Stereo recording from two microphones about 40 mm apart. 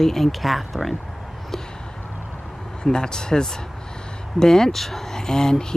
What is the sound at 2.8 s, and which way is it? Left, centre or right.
Speech, centre.